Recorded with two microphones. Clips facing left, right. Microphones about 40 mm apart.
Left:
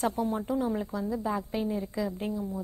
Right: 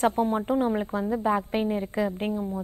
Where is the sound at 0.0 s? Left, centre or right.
Right.